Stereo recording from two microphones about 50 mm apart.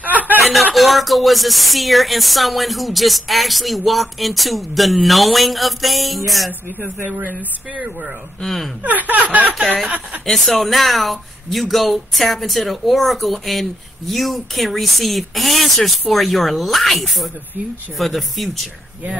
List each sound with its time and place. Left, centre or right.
0.7 s speech: centre
8.4 s speech: centre
8.8 s speech: right
10.2 s speech: centre